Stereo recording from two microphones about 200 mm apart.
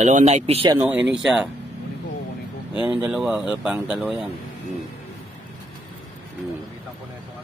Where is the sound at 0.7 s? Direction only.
5° right (ahead or behind).